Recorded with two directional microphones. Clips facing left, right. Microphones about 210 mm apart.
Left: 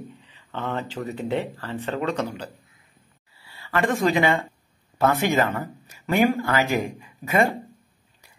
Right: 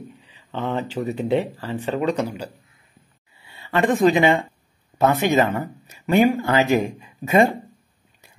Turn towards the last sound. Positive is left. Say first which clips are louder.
# right 4 dB
turn(degrees=-25)  # may be behind; listen again after turning